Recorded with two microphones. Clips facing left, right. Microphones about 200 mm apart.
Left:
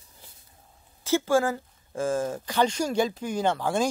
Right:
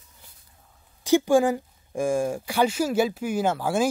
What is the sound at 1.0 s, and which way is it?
Speech, 15° right (ahead or behind).